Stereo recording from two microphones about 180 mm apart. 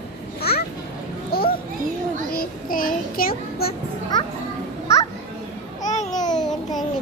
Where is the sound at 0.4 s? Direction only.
60° left (ahead or behind).